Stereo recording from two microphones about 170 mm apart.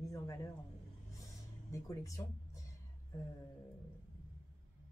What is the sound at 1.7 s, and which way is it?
Speech, 20° left (ahead or behind).